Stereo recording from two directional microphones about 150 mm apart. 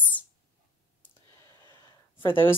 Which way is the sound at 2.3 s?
15° left (ahead or behind).